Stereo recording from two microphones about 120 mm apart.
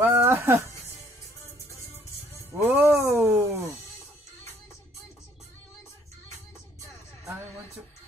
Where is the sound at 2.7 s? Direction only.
15° right (ahead or behind).